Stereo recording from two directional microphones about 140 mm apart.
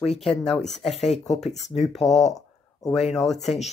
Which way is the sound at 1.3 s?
55° left (ahead or behind).